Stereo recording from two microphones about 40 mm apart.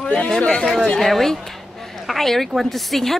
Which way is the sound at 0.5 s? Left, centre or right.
Centre.